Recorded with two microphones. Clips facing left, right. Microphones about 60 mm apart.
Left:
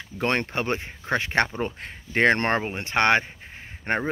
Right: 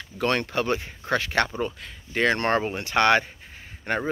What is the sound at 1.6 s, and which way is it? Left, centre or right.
Speech, left.